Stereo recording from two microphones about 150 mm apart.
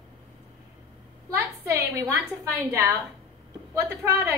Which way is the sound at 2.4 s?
20° right (ahead or behind).